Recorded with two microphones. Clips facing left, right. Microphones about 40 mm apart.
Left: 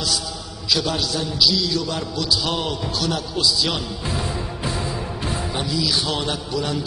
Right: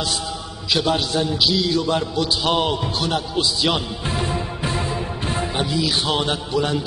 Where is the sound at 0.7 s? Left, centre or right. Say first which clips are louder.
Right 2 dB; right.